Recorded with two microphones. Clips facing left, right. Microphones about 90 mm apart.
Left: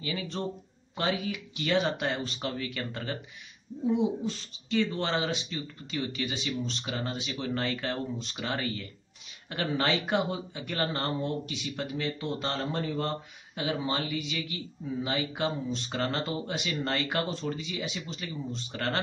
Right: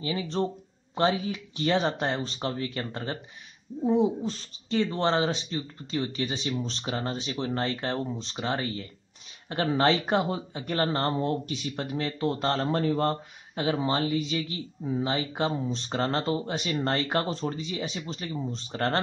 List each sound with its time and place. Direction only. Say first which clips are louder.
0.0 s speech: right 5 dB; 35° right (ahead or behind)